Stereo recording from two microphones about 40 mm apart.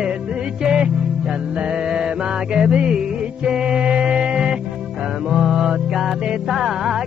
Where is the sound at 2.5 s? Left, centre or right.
Right.